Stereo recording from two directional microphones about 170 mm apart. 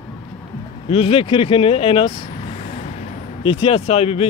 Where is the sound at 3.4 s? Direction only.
30° left (ahead or behind).